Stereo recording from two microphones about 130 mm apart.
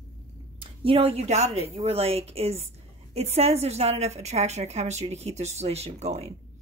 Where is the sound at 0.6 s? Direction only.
45° right (ahead or behind).